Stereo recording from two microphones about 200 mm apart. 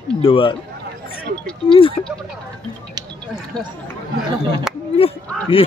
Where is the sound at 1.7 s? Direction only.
25° left (ahead or behind).